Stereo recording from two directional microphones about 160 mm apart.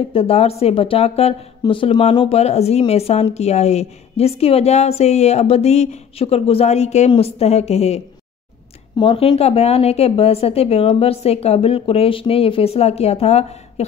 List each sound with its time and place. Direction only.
0.1 s speech: 40° left (ahead or behind)